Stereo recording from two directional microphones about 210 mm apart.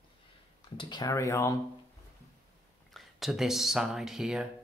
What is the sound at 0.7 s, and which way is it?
Speech, 20° left (ahead or behind).